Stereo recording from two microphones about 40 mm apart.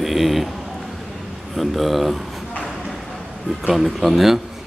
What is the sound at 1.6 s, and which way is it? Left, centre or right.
Speech, centre.